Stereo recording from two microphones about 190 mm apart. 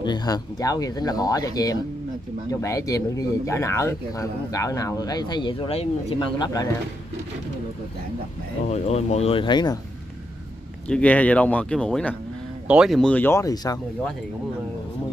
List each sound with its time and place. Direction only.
0.0 s speech: 20° left (ahead or behind)
8.6 s speech: 35° left (ahead or behind)
10.9 s speech: 5° left (ahead or behind)
12.6 s speech: 5° right (ahead or behind); by 13.7 s 15° left (ahead or behind)